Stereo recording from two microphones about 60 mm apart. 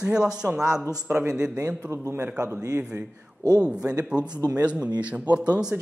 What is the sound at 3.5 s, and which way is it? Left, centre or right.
Speech, centre.